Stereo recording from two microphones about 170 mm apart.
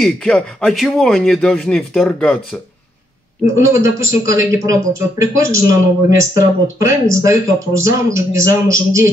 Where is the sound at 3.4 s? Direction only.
20° right (ahead or behind).